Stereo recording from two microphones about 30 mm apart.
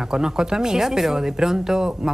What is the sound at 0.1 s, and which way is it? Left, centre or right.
A woman's voice, right.